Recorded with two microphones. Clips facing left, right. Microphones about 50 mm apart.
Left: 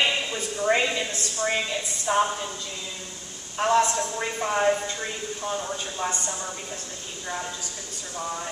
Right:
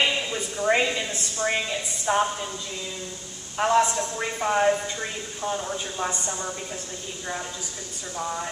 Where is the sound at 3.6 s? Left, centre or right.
Centre.